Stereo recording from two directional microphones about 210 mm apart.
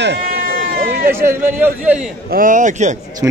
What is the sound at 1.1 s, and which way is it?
Speech, 10° right (ahead or behind).